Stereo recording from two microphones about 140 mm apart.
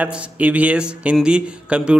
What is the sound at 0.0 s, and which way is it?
Speech, 10° right (ahead or behind).